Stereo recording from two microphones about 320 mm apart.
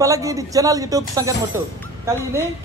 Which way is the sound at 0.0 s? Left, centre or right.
Centre.